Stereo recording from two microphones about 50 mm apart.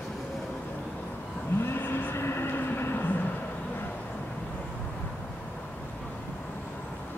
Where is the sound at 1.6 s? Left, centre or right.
Left.